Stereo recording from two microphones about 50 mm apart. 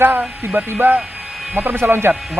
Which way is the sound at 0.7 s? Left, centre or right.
Right.